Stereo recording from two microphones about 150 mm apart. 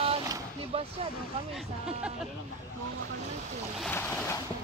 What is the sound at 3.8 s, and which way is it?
Boat, 15° left (ahead or behind).